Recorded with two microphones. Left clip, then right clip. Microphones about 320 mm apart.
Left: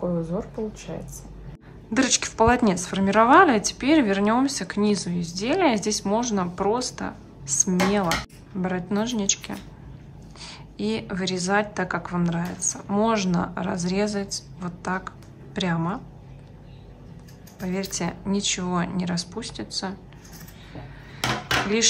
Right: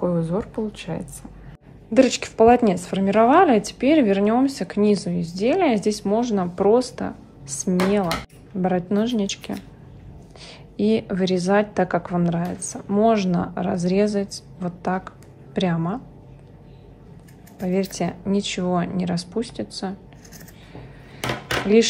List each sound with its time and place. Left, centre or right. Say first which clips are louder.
0.0 s speech: right 4 dB; right
2.0 s a woman's voice: right 5 dB; centre
17.6 s a woman's voice: right 5 dB; centre